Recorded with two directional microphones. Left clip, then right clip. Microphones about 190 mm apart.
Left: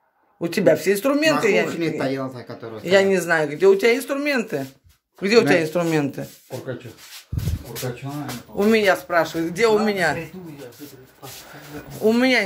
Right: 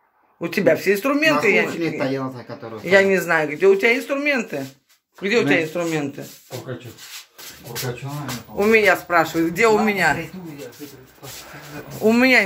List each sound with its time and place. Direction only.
0.4 s speech: 20° left (ahead or behind)
5.3 s speech: 40° left (ahead or behind)
8.5 s speech: 15° left (ahead or behind)
12.0 s speech: 10° left (ahead or behind)